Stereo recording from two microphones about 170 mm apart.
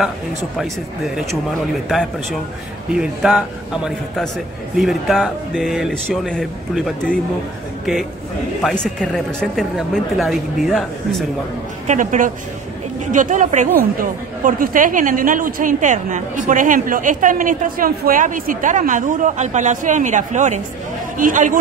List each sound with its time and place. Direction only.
0.6 s speech: centre (ahead or behind)
2.9 s speech: 5° right (ahead or behind)
8.6 s speech: 5° left (ahead or behind)
11.9 s a woman's voice: 50° right (ahead or behind)